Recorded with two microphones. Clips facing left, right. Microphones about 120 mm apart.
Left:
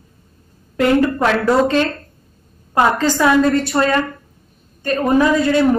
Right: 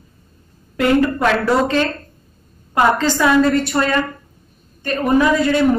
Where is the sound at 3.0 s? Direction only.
25° left (ahead or behind).